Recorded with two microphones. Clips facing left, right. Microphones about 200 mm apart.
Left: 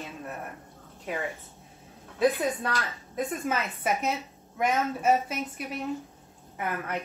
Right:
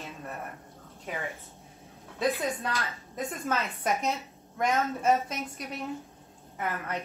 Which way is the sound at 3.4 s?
5° left (ahead or behind).